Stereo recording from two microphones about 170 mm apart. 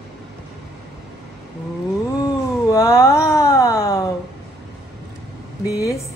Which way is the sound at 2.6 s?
20° left (ahead or behind).